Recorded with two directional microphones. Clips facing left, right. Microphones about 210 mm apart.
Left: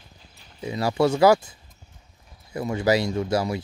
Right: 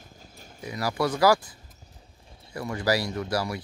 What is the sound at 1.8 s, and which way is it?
Clip-clop, 30° right (ahead or behind).